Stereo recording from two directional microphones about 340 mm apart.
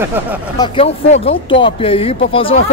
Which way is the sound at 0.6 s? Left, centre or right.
Centre.